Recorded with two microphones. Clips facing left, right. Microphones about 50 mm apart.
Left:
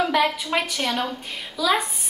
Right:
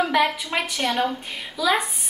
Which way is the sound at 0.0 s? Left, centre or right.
Centre.